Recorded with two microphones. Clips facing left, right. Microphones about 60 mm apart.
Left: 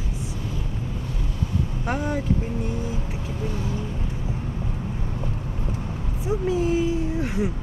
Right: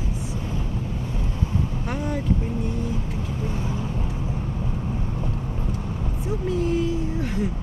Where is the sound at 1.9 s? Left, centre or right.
Centre.